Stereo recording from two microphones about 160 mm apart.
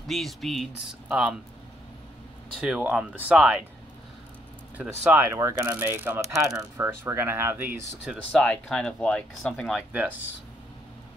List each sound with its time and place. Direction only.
0.0 s speech: centre (ahead or behind)
2.6 s speech: 5° right (ahead or behind)
4.7 s speech: 10° right (ahead or behind)
8.3 s speech: 10° left (ahead or behind)